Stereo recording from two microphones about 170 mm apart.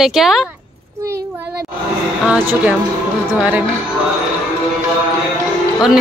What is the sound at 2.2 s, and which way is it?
Speech, 5° right (ahead or behind).